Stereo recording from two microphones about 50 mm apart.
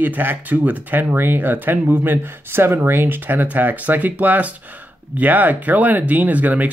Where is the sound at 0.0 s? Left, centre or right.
Right.